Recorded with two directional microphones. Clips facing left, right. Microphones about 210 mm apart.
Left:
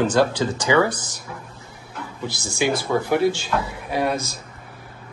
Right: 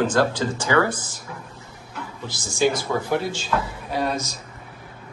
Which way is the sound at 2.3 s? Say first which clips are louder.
Left 2 dB; 65° left (ahead or behind).